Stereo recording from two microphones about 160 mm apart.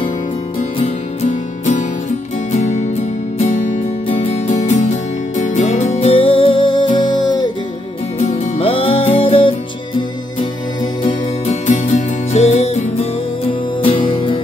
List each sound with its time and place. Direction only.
0.7 s music: 45° left (ahead or behind); by 7.5 s 30° left (ahead or behind)
8.2 s music: 40° left (ahead or behind)
11.0 s music: 45° left (ahead or behind)
14.0 s music: 30° left (ahead or behind)